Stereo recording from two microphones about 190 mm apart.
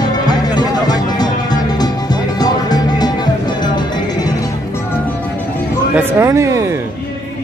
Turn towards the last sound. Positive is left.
turn(degrees=-15)  # may be behind; listen again after turning